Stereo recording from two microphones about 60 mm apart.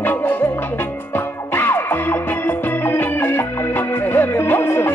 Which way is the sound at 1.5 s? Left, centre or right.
Left.